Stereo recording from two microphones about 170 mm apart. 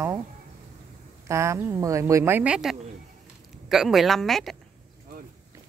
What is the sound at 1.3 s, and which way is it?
A man's voice, 15° right (ahead or behind).